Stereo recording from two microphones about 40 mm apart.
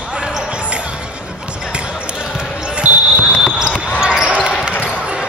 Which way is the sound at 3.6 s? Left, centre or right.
Centre.